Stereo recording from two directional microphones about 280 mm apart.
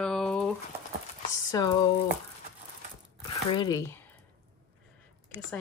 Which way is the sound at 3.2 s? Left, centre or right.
Centre.